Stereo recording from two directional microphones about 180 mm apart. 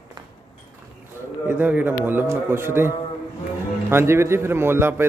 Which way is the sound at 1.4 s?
10° right (ahead or behind).